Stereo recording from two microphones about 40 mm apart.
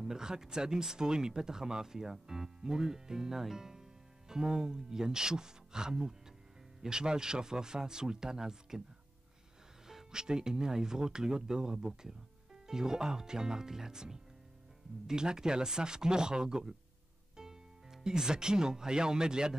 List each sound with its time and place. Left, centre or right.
0.0 s speech: centre
9.8 s speech: centre